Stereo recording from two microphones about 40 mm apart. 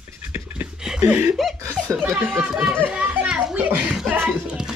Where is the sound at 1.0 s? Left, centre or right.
Right.